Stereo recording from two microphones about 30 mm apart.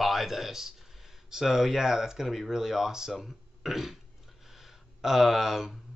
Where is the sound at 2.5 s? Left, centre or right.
Centre.